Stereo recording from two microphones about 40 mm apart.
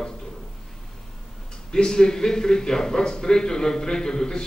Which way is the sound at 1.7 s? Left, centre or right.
Centre.